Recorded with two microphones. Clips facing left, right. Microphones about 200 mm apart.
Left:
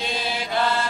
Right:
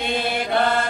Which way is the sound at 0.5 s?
55° right (ahead or behind).